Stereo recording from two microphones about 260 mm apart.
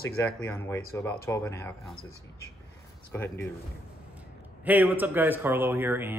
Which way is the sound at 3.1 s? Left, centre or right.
Centre.